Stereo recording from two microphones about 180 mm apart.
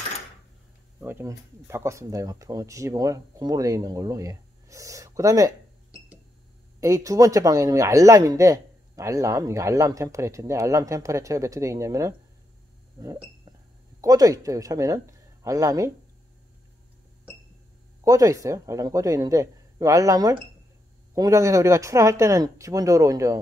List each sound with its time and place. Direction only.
1.0 s speech: 15° right (ahead or behind)
6.8 s speech: 15° right (ahead or behind)
13.0 s hiccup: 20° right (ahead or behind)
14.0 s speech: 20° right (ahead or behind)
18.0 s speech: 20° right (ahead or behind)